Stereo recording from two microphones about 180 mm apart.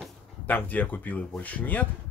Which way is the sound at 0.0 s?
10° left (ahead or behind).